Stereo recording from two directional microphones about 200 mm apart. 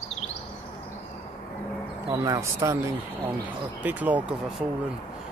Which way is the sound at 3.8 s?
10° right (ahead or behind).